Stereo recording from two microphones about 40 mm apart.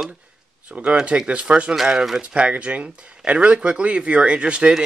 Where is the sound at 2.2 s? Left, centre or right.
Right.